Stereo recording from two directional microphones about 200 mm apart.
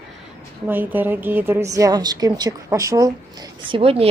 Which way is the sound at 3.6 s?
25° right (ahead or behind).